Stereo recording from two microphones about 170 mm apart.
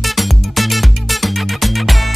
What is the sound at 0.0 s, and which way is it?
Music, centre (ahead or behind).